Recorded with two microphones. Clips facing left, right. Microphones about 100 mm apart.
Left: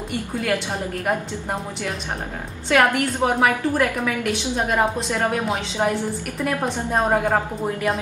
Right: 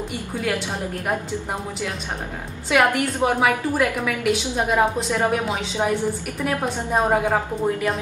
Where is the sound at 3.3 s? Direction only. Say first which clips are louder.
Left 1 dB; 5° right (ahead or behind).